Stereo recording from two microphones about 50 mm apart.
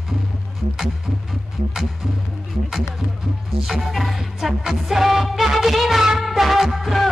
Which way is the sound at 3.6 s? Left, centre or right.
Centre.